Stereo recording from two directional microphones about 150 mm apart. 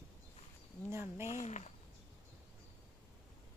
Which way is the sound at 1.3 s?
50° left (ahead or behind).